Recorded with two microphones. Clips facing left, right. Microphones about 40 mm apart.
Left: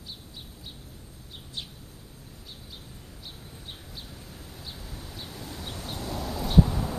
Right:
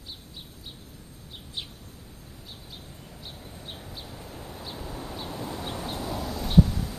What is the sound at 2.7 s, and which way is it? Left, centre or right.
Vehicle, centre.